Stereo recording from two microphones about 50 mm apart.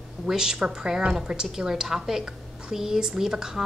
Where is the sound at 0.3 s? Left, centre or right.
Centre.